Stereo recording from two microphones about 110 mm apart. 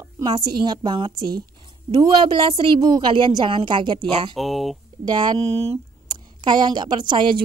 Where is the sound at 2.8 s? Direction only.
45° right (ahead or behind).